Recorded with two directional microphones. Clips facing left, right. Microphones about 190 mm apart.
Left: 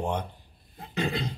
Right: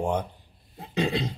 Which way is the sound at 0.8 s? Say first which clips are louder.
Right 3 dB; 20° right (ahead or behind).